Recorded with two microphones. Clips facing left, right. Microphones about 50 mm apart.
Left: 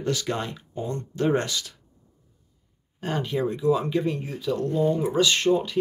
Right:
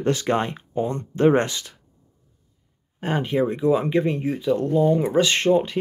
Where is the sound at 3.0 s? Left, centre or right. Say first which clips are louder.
Right 5 dB; right.